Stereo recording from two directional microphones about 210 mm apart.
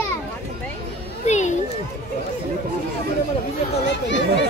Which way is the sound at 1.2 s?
35° left (ahead or behind).